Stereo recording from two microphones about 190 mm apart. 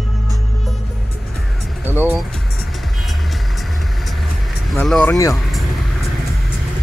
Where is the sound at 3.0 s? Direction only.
Centre (ahead or behind).